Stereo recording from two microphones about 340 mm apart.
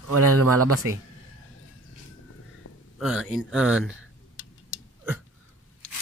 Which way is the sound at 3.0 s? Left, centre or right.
Centre.